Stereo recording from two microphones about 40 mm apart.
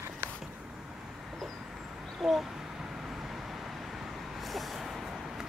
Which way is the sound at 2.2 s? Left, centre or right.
Centre.